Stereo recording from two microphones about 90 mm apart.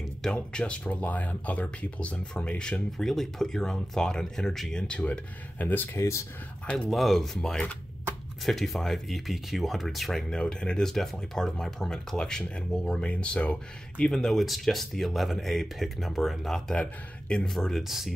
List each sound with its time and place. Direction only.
0.2 s speech: 10° left (ahead or behind)
5.9 s speech: 35° left (ahead or behind)
6.9 s speech: centre (ahead or behind)
14.1 s speech: 5° left (ahead or behind)